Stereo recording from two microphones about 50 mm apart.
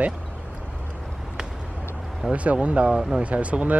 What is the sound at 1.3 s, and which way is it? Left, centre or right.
Vehicle, centre.